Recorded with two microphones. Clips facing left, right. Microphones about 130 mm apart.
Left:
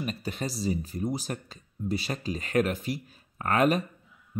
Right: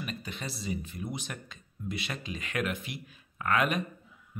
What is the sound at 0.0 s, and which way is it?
Speech, 40° left (ahead or behind).